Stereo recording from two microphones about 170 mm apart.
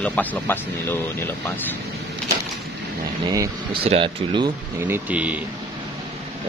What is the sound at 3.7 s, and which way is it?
Speech, 35° right (ahead or behind).